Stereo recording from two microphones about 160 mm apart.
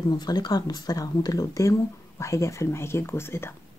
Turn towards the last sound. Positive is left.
turn(degrees=15)  # may be behind; listen again after turning